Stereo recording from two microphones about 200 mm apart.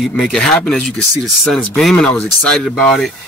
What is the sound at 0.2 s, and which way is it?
Speech, centre (ahead or behind).